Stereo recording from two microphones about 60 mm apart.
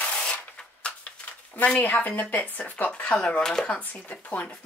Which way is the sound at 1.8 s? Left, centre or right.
Left.